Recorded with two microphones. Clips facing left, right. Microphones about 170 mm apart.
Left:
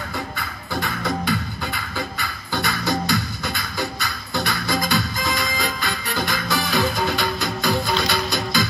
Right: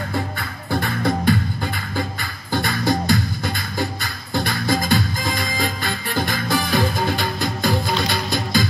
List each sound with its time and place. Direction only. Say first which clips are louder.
0.1 s music: right 4 dB; 55° right (ahead or behind)